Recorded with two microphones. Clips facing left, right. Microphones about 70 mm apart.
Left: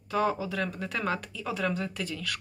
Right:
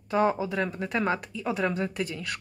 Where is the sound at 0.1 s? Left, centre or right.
Right.